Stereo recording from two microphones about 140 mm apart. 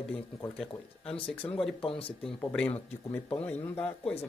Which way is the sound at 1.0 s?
40° left (ahead or behind).